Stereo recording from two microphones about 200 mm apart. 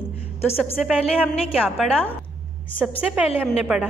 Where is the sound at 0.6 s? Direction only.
Centre (ahead or behind).